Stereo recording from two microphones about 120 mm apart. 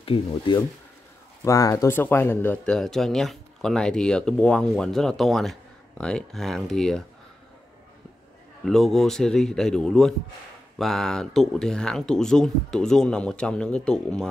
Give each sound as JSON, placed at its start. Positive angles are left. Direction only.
{"t": 0.0, "sound": "speech", "side_deg": 50}
{"t": 1.4, "sound": "speech", "side_deg": 25}
{"t": 8.6, "sound": "speech", "side_deg": 5}